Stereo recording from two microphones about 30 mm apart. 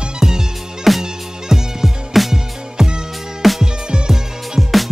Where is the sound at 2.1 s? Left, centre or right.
Centre.